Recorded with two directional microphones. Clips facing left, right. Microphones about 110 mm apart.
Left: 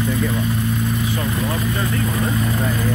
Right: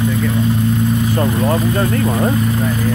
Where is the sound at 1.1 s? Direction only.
45° right (ahead or behind).